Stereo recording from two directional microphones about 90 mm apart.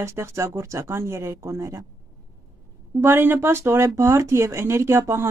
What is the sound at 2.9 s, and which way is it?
A woman's voice, 25° right (ahead or behind).